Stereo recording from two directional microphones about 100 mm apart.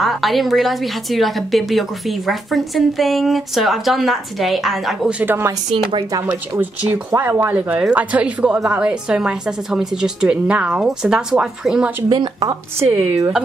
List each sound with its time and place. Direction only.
0.0 s a woman's voice: centre (ahead or behind)
5.2 s speech: 25° right (ahead or behind)
7.1 s a woman's voice: 25° right (ahead or behind)
12.1 s speech: 45° right (ahead or behind)